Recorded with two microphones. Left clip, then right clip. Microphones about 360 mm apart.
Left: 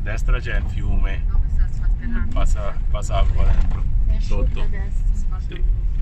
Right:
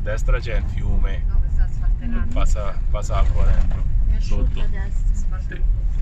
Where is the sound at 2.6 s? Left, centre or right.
Centre.